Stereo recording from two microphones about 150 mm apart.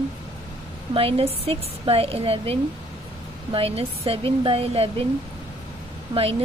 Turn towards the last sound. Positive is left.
turn(degrees=-40)  # may be behind; listen again after turning